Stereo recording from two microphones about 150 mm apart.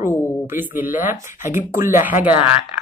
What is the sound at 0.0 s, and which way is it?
Speech, 15° right (ahead or behind).